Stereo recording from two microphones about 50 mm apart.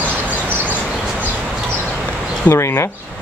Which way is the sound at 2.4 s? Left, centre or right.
Left.